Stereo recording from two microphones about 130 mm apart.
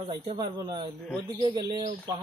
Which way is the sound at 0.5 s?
35° right (ahead or behind).